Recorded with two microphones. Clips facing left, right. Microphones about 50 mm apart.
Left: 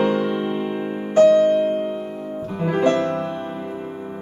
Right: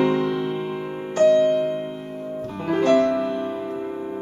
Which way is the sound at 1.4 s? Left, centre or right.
Centre.